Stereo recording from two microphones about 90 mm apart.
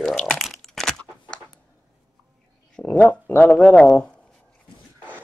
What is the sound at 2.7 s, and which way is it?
Speech, 15° left (ahead or behind).